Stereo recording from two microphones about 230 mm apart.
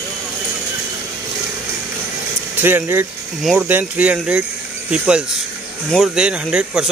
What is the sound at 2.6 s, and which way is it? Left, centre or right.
Speech, centre.